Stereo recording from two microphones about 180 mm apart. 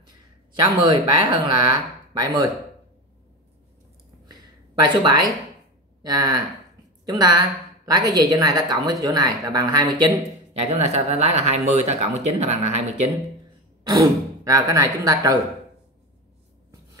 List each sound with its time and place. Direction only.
0.7 s speech: 25° right (ahead or behind)
5.0 s speech: 20° right (ahead or behind)
10.7 s speech: 35° right (ahead or behind)
13.8 s speech: 20° right (ahead or behind)